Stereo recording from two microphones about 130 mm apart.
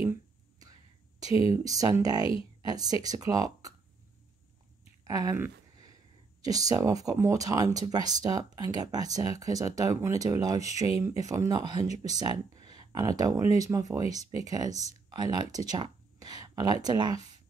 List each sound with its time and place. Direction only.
0.0 s whispering: 25° right (ahead or behind)
1.5 s speech: 25° right (ahead or behind)
5.0 s a sound: 25° right (ahead or behind)
6.4 s speech: 30° right (ahead or behind)